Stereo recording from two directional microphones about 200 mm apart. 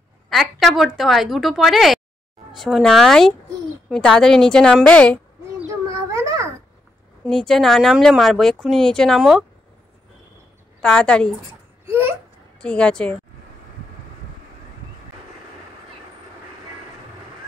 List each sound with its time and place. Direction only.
0.3 s speech: centre (ahead or behind)
5.6 s a sound: 15° right (ahead or behind)
7.2 s speech: centre (ahead or behind)
10.8 s speech: 5° left (ahead or behind)
11.9 s babbling: 10° right (ahead or behind)
12.5 s speech: 5° left (ahead or behind)